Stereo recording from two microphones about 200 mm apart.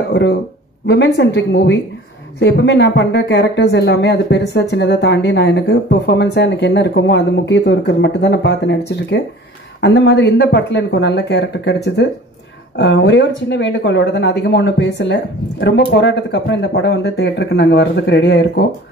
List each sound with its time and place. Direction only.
0.1 s speech: 55° left (ahead or behind)